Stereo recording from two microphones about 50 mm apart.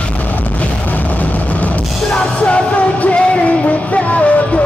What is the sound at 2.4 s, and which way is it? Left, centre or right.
Music, left.